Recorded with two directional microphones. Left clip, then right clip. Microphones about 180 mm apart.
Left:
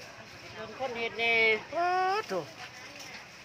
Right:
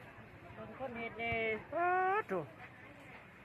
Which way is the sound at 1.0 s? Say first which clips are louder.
Left 12 dB; 80° left.